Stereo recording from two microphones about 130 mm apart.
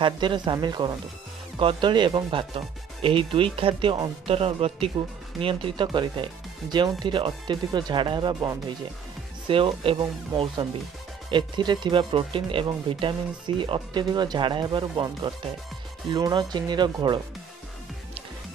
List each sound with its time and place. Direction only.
0.0 s speech: 40° right (ahead or behind)
4.3 s a man's voice: 50° right (ahead or behind)